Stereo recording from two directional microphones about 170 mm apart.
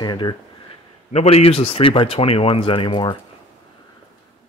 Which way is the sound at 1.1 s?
40° left (ahead or behind).